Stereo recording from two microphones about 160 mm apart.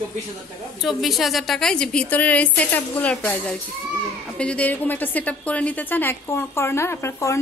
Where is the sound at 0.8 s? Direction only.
Centre (ahead or behind).